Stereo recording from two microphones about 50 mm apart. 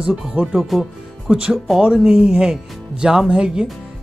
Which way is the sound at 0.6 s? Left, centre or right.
Centre.